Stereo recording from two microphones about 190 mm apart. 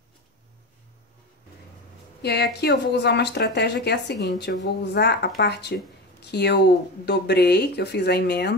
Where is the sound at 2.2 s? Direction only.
60° left (ahead or behind).